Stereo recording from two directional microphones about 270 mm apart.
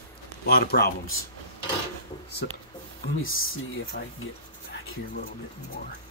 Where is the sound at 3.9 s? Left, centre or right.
Left.